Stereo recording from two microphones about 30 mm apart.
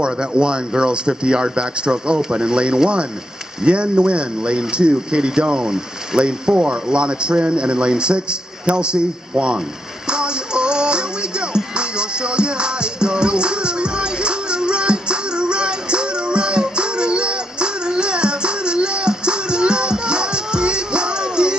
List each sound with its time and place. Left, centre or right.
0.0 s speech: right
10.0 s music: right